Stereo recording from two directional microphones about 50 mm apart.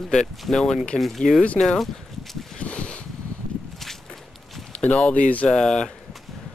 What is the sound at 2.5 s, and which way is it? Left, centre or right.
Boat, left.